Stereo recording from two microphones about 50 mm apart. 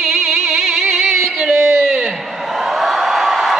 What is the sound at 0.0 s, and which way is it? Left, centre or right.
Music, centre.